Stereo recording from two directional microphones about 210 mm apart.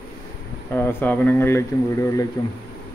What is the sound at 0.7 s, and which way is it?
Speech, 10° left (ahead or behind).